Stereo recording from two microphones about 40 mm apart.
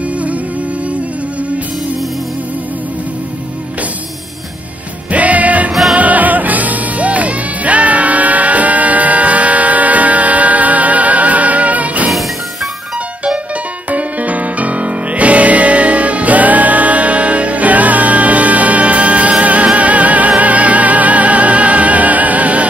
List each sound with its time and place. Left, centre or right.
5.1 s music: right
5.7 s music: centre
5.9 s music: right
13.8 s music: right